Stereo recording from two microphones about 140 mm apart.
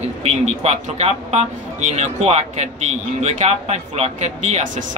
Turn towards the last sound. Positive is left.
turn(degrees=-50)  # may be behind; listen again after turning